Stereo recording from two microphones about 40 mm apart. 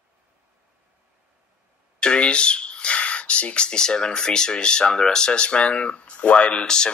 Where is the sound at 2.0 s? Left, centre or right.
Left.